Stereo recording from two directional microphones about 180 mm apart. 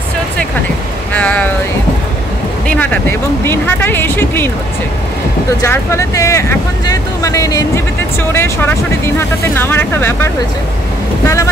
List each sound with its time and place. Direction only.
1.1 s a sound: 10° left (ahead or behind)
2.7 s speech: 10° left (ahead or behind)
5.6 s speech: 15° left (ahead or behind)